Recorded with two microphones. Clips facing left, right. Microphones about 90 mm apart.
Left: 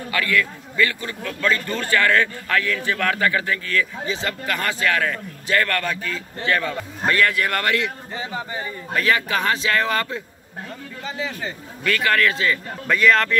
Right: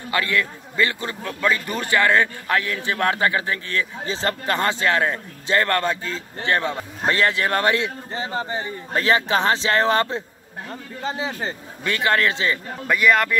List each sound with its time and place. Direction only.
0.1 s a man's voice: 25° right (ahead or behind)
4.0 s a man's voice: 35° right (ahead or behind)
12.8 s speech: 10° right (ahead or behind)